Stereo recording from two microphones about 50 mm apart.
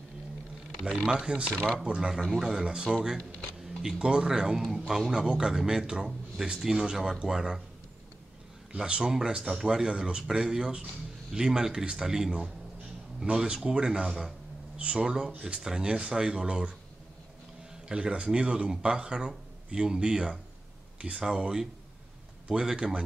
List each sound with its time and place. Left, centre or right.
1.0 s speech: centre
5.1 s speech: centre
8.7 s speech: centre
17.8 s speech: centre